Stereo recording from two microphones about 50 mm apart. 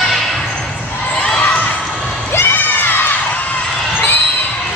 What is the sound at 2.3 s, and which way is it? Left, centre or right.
Children shouting, left.